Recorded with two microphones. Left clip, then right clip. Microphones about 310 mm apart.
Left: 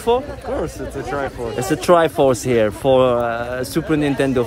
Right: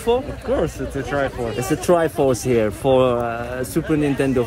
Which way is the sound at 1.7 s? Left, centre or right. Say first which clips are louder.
Left 4 dB; centre.